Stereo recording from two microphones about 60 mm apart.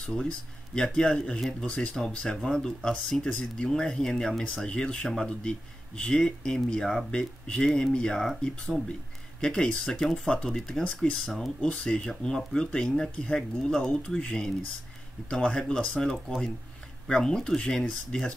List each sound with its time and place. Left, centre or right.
0.7 s speech: centre
2.0 s speech: centre
7.1 s speech: centre